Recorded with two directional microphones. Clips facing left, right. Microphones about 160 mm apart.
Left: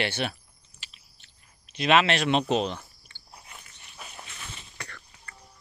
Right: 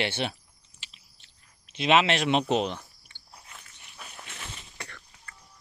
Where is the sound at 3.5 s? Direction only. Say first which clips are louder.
Left 1 dB; 10° left (ahead or behind).